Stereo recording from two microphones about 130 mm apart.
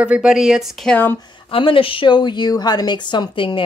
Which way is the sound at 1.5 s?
45° left (ahead or behind).